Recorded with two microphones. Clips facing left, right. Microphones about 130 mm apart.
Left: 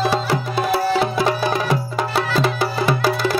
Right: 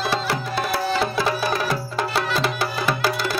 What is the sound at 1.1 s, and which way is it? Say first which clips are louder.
Music: left 3 dB; 20° left (ahead or behind).